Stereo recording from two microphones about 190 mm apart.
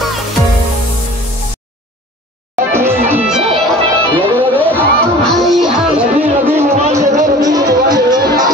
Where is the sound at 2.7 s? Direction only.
10° right (ahead or behind).